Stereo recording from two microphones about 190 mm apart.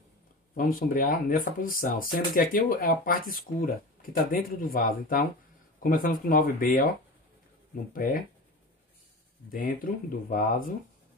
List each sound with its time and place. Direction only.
0.6 s speech: 50° left (ahead or behind)
7.9 s speech: 45° left (ahead or behind)
9.5 s speech: 50° left (ahead or behind)